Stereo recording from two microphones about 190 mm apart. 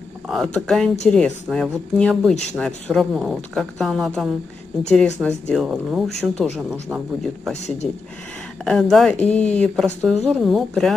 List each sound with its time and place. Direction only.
0.3 s speech: centre (ahead or behind)
7.8 s speech: 5° left (ahead or behind)